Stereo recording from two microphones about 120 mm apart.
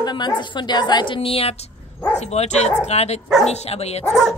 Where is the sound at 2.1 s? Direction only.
65° left (ahead or behind).